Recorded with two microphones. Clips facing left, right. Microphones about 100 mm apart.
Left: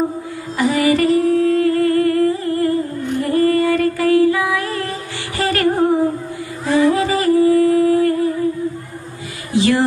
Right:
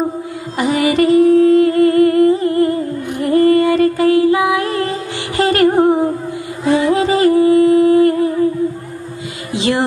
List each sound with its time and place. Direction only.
0.6 s humming: 20° right (ahead or behind)
5.4 s music: 20° right (ahead or behind)
9.5 s a sound: 20° right (ahead or behind)